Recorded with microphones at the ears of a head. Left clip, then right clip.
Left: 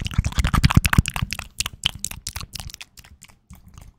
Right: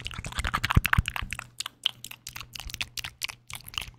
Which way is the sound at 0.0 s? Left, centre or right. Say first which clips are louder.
Left 5 dB; left.